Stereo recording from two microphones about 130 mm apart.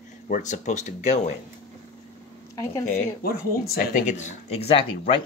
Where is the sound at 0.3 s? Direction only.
70° left (ahead or behind).